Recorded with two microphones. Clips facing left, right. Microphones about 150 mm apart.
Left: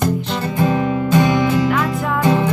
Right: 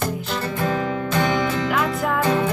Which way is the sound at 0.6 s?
20° left (ahead or behind).